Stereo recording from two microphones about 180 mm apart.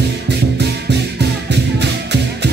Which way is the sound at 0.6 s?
70° right (ahead or behind).